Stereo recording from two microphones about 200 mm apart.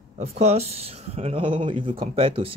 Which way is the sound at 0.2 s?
30° right (ahead or behind).